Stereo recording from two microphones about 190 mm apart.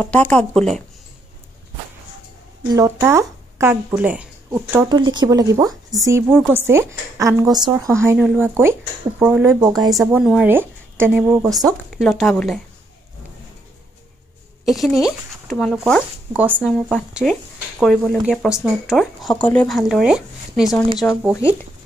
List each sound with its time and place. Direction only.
0.0 s speech: 10° left (ahead or behind)
2.7 s speech: 15° right (ahead or behind)
4.8 s speech: 25° right (ahead or behind)
9.9 s speech: 5° right (ahead or behind)
11.9 s speech: centre (ahead or behind)
14.6 s speech: centre (ahead or behind)